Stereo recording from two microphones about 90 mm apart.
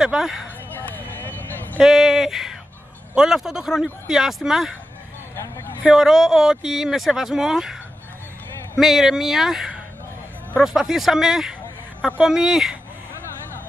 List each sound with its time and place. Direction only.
0.0 s speech: 5° right (ahead or behind)
0.7 s a sound: 20° left (ahead or behind)
1.8 s speech: 5° right (ahead or behind)
5.3 s vehicle: 30° left (ahead or behind)
5.9 s speech: 5° right (ahead or behind)
8.7 s speech: 5° right (ahead or behind)